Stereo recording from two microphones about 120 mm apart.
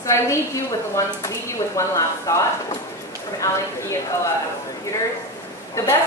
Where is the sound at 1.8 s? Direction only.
25° left (ahead or behind).